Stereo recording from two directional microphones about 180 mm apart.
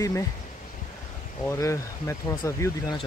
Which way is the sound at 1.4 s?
15° left (ahead or behind).